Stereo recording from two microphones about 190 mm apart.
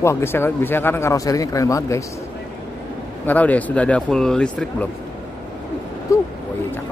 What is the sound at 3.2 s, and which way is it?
Speech, 10° left (ahead or behind).